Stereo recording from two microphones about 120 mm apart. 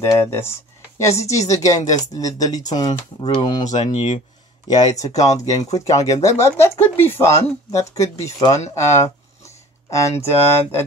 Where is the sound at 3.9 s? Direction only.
65° left (ahead or behind).